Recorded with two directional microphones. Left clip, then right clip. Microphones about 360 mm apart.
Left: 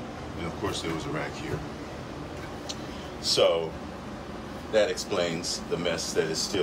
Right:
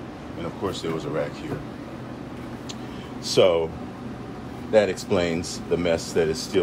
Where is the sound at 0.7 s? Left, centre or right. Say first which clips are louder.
Right 3 dB; centre.